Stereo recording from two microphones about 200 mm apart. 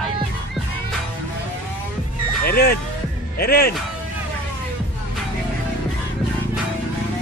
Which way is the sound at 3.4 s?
50° left (ahead or behind).